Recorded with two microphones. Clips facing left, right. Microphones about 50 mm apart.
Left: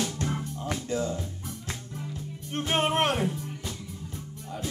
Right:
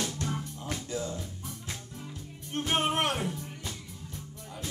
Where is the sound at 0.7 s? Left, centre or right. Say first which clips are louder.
Left 5 dB; left.